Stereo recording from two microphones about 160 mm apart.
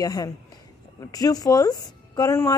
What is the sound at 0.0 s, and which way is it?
A woman's voice, 20° left (ahead or behind).